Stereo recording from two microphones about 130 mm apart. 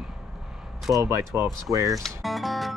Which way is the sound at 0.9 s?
20° right (ahead or behind).